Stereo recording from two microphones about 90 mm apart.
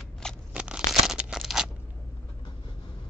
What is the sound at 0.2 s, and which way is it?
Shuffling cards, 5° left (ahead or behind).